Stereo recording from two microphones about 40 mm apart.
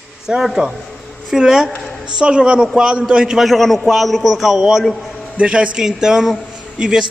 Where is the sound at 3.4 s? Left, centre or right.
Centre.